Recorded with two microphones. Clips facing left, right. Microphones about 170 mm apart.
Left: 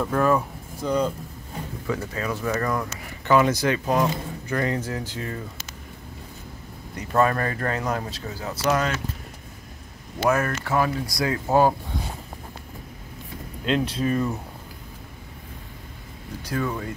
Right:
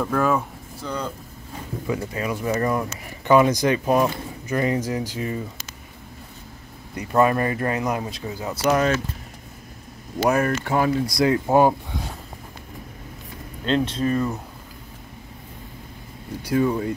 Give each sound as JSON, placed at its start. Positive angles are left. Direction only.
{"t": 0.0, "sound": "speech", "side_deg": 0}
{"t": 0.7, "sound": "speech", "side_deg": 15}
{"t": 1.9, "sound": "speech", "side_deg": -20}
{"t": 7.1, "sound": "speech", "side_deg": -10}
{"t": 10.2, "sound": "speech", "side_deg": -20}
{"t": 13.7, "sound": "speech", "side_deg": 5}
{"t": 16.5, "sound": "speech", "side_deg": -20}